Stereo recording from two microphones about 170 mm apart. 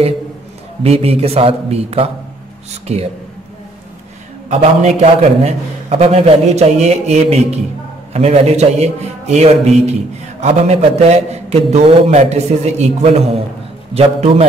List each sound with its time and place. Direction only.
0.8 s a man's voice: 35° right (ahead or behind)
4.5 s a man's voice: 40° right (ahead or behind)